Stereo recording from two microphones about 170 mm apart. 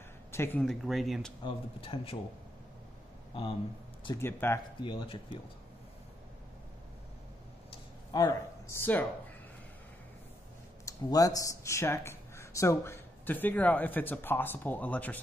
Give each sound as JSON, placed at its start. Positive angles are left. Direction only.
{"t": 0.3, "sound": "a sound", "side_deg": 15}
{"t": 0.6, "sound": "speech", "side_deg": 0}
{"t": 1.4, "sound": "speech", "side_deg": 30}
{"t": 4.2, "sound": "speech", "side_deg": 15}
{"t": 4.8, "sound": "speech", "side_deg": 30}
{"t": 7.7, "sound": "a sound", "side_deg": 20}
{"t": 10.9, "sound": "speech", "side_deg": 20}